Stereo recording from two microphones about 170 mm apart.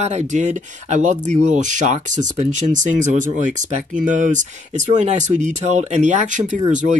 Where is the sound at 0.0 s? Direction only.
40° right (ahead or behind).